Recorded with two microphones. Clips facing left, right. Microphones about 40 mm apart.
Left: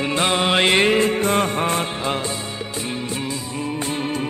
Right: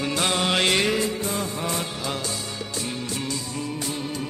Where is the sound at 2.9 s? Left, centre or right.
Left.